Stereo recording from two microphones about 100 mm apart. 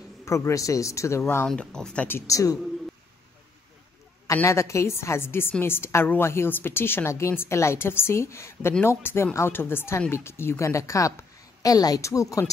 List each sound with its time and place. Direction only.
0.2 s speech: 30° left (ahead or behind)
1.5 s speech: 10° left (ahead or behind)
2.0 s speech: 30° left (ahead or behind)
4.3 s a woman's voice: 30° left (ahead or behind)